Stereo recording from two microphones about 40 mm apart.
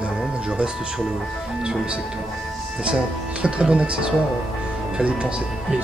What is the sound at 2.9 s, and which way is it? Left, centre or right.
Speech, right.